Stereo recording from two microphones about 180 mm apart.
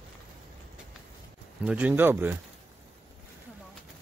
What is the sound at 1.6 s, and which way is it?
Speech, 10° right (ahead or behind).